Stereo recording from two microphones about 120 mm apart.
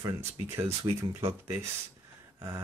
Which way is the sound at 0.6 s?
20° right (ahead or behind).